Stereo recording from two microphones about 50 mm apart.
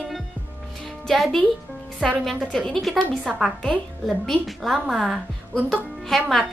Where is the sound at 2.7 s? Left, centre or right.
Centre.